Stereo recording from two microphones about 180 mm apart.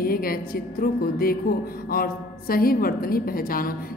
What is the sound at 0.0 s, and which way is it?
A woman's voice, 55° left (ahead or behind).